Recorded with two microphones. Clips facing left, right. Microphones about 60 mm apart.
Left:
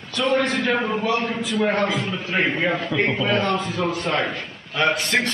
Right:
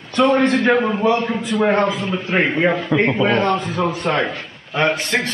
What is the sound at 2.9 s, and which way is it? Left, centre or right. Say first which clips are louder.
A man's voice: right 5 dB; right.